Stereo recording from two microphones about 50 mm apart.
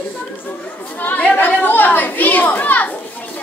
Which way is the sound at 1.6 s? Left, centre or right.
Left.